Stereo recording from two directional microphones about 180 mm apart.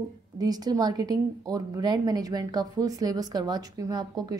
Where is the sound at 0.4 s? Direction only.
20° right (ahead or behind).